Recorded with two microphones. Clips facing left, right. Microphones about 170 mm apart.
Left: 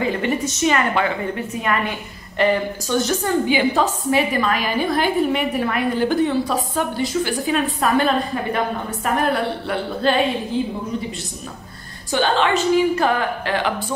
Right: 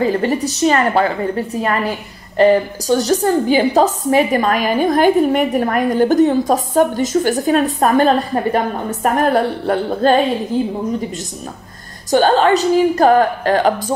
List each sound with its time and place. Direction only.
0.0 s a woman's voice: 40° right (ahead or behind)
12.1 s a woman's voice: 40° right (ahead or behind)